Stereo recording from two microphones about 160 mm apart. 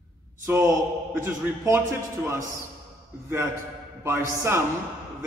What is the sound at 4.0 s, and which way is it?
Speech, 15° right (ahead or behind).